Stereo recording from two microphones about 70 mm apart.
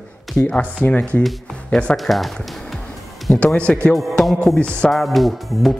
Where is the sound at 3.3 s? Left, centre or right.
Left.